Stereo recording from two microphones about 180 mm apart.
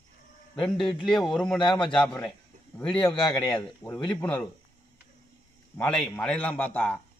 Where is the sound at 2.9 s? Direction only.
30° left (ahead or behind).